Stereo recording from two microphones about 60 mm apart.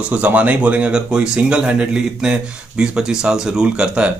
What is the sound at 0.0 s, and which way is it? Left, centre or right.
Speech, right.